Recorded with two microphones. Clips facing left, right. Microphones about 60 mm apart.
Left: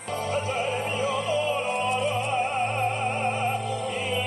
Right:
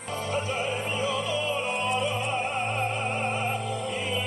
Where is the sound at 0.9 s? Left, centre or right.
Left.